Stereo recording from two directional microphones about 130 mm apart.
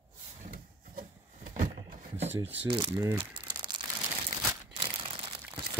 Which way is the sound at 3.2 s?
40° right (ahead or behind).